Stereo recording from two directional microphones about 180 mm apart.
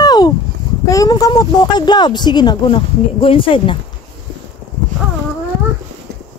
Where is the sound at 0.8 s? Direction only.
20° left (ahead or behind).